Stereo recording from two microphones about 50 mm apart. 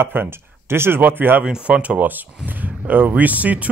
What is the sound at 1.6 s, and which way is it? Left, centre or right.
Speech, right.